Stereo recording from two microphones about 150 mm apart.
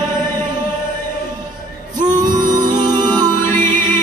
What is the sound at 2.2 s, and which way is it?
Music, 25° right (ahead or behind).